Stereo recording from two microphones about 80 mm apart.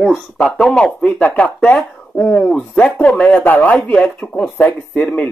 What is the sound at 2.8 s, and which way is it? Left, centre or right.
Speech, centre.